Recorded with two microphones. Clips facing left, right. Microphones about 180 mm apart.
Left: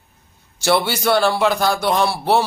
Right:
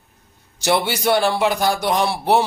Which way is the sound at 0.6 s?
15° right (ahead or behind).